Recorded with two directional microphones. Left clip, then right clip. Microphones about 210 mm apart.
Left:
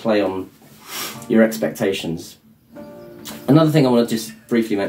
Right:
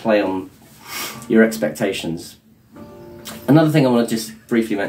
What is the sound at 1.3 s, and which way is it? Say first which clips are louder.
Speech: right 1 dB; centre (ahead or behind).